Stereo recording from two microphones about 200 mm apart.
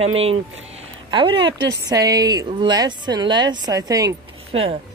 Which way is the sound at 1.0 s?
25° right (ahead or behind).